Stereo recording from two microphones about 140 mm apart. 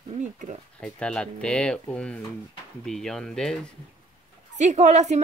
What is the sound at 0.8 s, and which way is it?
Speech, 5° left (ahead or behind).